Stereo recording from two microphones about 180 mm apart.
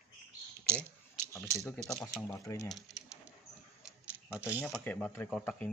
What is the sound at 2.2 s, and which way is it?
Speech, 15° left (ahead or behind).